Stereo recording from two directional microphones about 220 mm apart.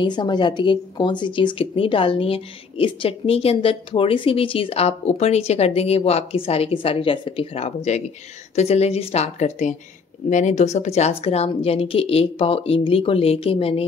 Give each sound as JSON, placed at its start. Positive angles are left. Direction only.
{"t": 0.0, "sound": "a woman's voice", "side_deg": 20}